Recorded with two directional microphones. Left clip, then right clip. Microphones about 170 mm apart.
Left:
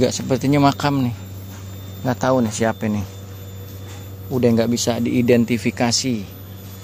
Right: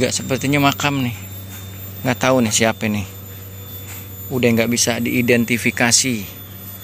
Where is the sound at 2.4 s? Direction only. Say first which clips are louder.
Right 3 dB; 5° right (ahead or behind).